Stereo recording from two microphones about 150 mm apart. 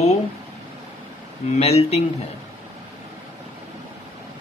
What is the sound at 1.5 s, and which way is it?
Speech, 45° left (ahead or behind).